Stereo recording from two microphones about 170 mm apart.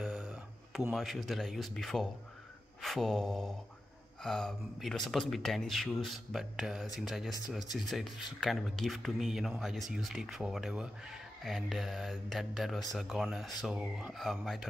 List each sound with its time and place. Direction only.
0.0 s a sound: 5° right (ahead or behind)
0.9 s speech: centre (ahead or behind)
7.6 s speech: 25° left (ahead or behind)
8.4 s speech: centre (ahead or behind)